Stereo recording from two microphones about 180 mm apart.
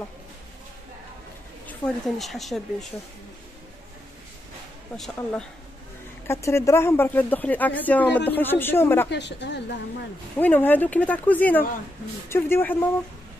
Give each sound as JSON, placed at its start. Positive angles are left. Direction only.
{"t": 1.7, "sound": "speech", "side_deg": 0}
{"t": 4.9, "sound": "speech", "side_deg": 0}
{"t": 6.2, "sound": "speech", "side_deg": 15}
{"t": 9.1, "sound": "a woman's voice", "side_deg": 70}
{"t": 10.3, "sound": "speech", "side_deg": 10}